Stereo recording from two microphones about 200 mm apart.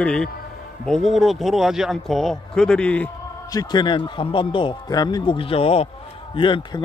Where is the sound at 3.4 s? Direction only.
20° left (ahead or behind).